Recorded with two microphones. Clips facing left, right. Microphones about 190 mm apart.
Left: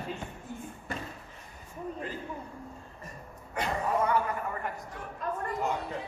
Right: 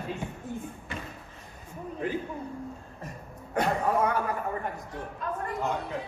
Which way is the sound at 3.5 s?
50° right (ahead or behind).